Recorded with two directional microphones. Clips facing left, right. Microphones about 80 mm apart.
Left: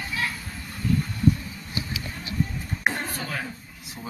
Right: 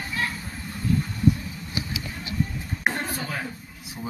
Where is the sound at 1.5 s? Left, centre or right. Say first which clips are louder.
Right 1 dB; right.